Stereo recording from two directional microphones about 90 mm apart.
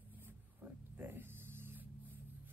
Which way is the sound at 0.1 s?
20° right (ahead or behind).